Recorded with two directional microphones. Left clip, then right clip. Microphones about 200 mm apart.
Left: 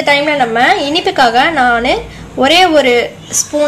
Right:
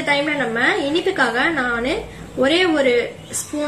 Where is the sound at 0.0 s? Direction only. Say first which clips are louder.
Left 8 dB; 40° left (ahead or behind).